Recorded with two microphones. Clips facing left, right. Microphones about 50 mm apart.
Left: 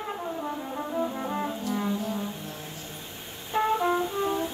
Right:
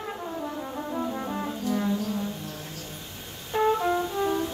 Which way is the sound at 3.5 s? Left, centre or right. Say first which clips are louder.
Right 1 dB; centre.